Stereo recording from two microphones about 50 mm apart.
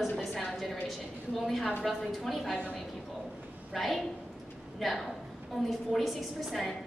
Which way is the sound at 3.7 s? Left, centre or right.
Centre.